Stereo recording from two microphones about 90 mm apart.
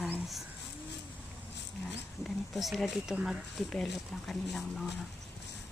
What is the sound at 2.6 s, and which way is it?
Speech, centre (ahead or behind).